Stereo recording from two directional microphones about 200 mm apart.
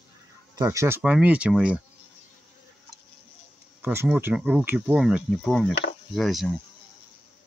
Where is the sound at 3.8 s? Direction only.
10° right (ahead or behind).